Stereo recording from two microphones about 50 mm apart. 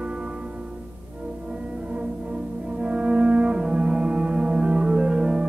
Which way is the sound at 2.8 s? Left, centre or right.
Right.